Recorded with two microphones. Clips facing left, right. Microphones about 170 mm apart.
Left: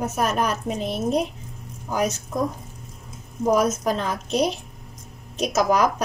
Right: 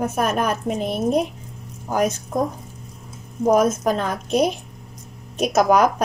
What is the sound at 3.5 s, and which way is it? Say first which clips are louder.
A woman's voice: right 3 dB; 50° right (ahead or behind).